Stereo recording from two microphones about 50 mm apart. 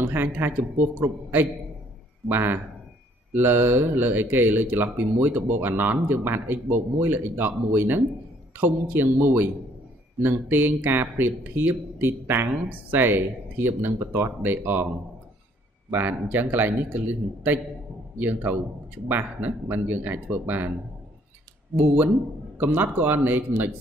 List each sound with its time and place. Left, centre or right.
0.0 s speech: right
12.6 s speech: right
13.0 s speech: right
15.9 s speech: right
21.7 s speech: right